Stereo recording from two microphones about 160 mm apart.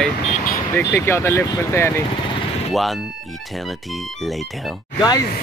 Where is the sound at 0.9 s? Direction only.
15° left (ahead or behind).